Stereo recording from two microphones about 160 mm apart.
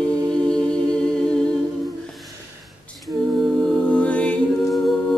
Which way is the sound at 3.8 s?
5° left (ahead or behind).